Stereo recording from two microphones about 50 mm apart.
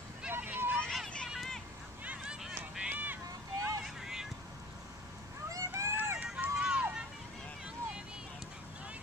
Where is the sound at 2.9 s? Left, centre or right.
Right.